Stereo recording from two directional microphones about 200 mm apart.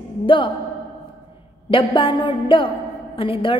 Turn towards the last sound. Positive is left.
turn(degrees=25)  # may be behind; listen again after turning